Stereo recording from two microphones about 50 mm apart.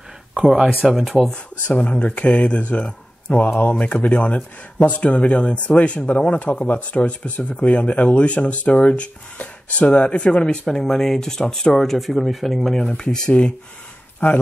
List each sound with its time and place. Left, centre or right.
0.3 s speech: centre
1.3 s speech: centre
1.9 s speech: left
3.4 s speech: left
3.8 s speech: left; by 12.8 s centre
12.8 s speech: centre